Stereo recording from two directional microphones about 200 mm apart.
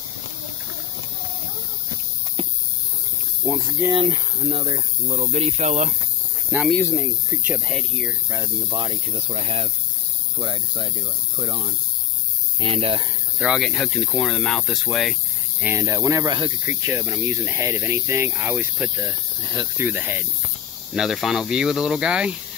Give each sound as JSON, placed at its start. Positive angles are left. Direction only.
{"t": 3.4, "sound": "speech", "side_deg": -5}
{"t": 4.5, "sound": "speech", "side_deg": -25}
{"t": 6.5, "sound": "speech", "side_deg": -5}
{"t": 8.3, "sound": "speech", "side_deg": -20}
{"t": 13.4, "sound": "speech", "side_deg": 0}
{"t": 15.6, "sound": "speech", "side_deg": -15}